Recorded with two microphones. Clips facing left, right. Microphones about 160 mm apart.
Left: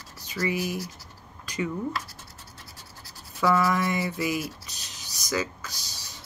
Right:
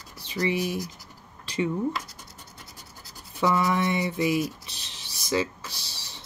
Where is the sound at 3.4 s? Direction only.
20° right (ahead or behind).